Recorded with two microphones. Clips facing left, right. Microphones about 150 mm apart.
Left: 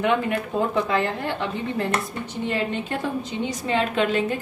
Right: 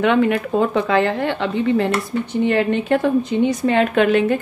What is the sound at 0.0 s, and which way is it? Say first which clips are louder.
A woman's voice: right 6 dB; 80° right.